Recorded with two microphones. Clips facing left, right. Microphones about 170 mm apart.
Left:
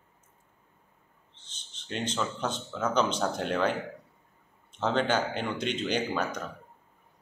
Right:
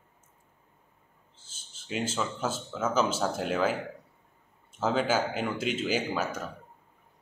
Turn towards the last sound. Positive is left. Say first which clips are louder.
# even
turn(degrees=-5)  # may be behind; listen again after turning